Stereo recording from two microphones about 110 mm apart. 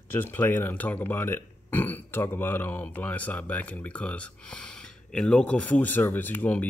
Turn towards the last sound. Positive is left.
turn(degrees=15)  # may be behind; listen again after turning